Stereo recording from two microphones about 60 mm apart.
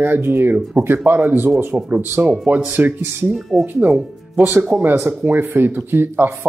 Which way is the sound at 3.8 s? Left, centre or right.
Right.